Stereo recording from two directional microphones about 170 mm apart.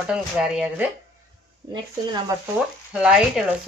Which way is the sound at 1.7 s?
25° right (ahead or behind).